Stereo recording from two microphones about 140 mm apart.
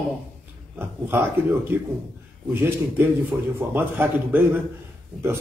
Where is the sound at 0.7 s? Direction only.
15° right (ahead or behind).